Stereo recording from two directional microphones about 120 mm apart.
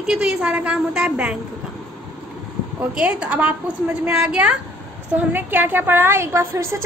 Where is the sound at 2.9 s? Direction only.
10° right (ahead or behind).